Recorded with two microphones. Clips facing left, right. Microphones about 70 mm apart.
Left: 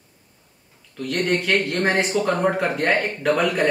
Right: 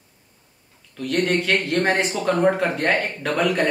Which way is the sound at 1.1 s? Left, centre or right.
Centre.